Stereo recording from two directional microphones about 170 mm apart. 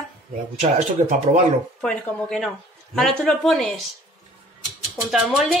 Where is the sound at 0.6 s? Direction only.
45° right (ahead or behind).